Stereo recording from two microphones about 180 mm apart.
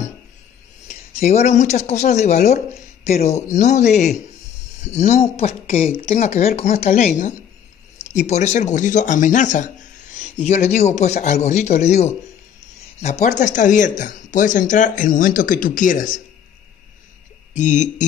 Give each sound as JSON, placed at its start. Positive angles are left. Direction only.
{"t": 0.8, "sound": "speech", "side_deg": 40}
{"t": 17.6, "sound": "speech", "side_deg": 40}